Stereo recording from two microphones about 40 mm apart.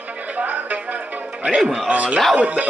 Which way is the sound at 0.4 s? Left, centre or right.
Right.